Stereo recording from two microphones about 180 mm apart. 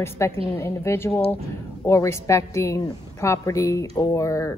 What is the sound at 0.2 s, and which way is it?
A woman's voice, 15° left (ahead or behind).